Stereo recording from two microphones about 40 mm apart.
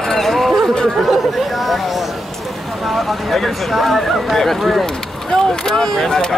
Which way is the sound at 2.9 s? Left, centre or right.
Centre.